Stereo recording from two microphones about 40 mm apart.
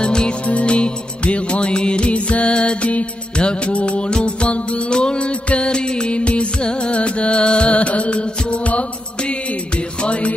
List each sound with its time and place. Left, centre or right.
0.0 s music: left
10.0 s music: left